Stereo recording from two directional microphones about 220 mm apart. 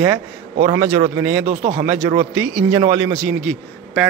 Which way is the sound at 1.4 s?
35° right (ahead or behind).